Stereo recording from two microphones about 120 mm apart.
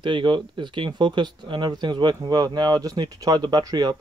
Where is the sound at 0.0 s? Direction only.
40° right (ahead or behind).